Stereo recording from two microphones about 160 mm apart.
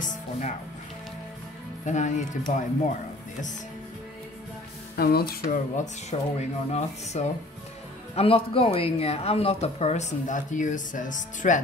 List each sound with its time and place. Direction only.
0.0 s music: 50° left (ahead or behind)
1.9 s speech: 50° left (ahead or behind)
4.9 s speech: 75° left (ahead or behind); by 11.6 s 50° left (ahead or behind)